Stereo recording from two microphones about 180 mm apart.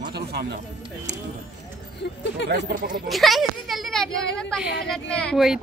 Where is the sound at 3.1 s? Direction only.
Centre (ahead or behind).